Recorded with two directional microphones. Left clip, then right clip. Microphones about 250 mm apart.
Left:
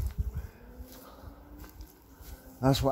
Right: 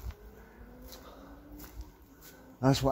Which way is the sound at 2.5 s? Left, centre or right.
Centre.